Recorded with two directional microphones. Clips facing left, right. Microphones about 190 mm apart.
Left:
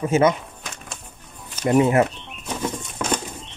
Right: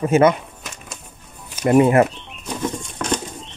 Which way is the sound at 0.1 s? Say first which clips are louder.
Right 3 dB; 60° right (ahead or behind).